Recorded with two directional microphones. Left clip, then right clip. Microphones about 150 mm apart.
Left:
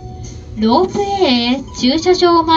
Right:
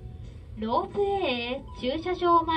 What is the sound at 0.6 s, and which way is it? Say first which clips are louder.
Speech: left 13 dB; 35° right (ahead or behind).